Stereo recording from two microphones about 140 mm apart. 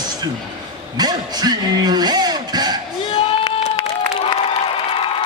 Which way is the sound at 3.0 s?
40° left (ahead or behind).